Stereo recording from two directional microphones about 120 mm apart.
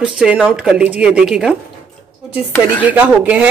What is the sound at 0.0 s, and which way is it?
Speech, 5° right (ahead or behind).